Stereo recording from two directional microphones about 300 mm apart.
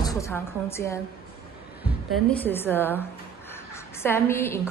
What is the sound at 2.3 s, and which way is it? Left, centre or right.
Speech, centre.